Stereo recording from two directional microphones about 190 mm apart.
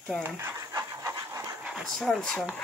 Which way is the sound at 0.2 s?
15° right (ahead or behind).